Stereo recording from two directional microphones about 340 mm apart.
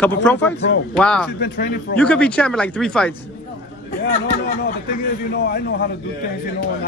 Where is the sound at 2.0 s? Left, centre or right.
Centre.